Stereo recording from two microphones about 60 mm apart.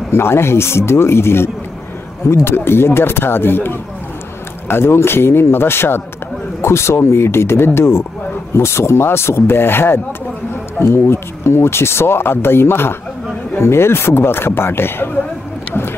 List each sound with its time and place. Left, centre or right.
0.1 s speech: left
11.1 s speech: left